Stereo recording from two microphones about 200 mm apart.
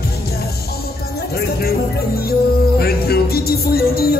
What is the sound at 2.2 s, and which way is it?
Music, 50° left (ahead or behind).